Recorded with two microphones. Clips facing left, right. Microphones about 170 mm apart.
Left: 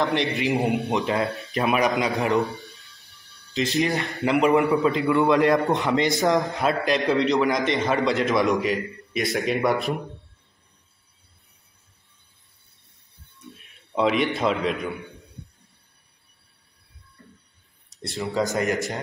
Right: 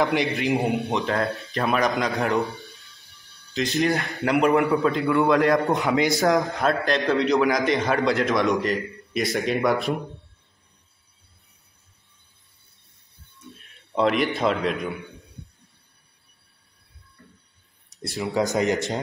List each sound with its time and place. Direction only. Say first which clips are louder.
0.0 s a man's voice: right 1 dB; centre (ahead or behind)
13.9 s a man's voice: even; centre (ahead or behind)
17.9 s speech: right 1 dB; centre (ahead or behind)
18.3 s speech: right 2 dB; 20° right (ahead or behind)